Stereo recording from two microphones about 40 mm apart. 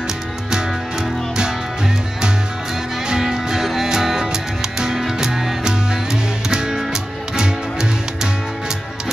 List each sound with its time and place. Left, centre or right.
3.1 s music: centre